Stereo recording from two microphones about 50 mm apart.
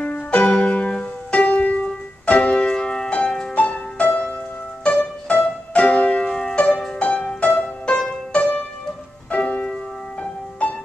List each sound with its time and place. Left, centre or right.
0.0 s music: left